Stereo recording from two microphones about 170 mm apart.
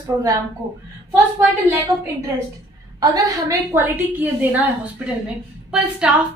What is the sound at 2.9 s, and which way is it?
A woman's voice, 20° right (ahead or behind).